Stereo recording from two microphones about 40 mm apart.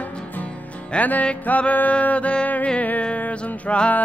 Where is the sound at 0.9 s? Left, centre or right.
Left.